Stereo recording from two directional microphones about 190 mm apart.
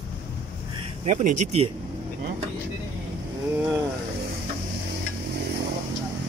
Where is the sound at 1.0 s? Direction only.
40° right (ahead or behind).